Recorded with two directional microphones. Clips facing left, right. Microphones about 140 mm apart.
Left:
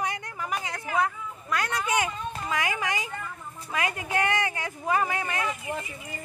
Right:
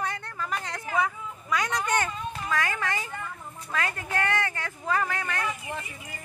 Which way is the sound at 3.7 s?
15° left (ahead or behind).